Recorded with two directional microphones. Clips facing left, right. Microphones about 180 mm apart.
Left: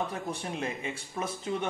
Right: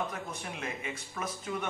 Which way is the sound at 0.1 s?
30° left (ahead or behind).